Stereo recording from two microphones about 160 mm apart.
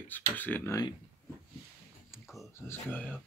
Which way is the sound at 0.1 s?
10° left (ahead or behind).